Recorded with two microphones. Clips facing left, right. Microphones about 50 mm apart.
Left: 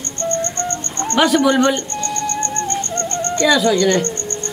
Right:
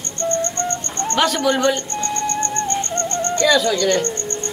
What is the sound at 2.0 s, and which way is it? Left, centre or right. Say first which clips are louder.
Music: even; right.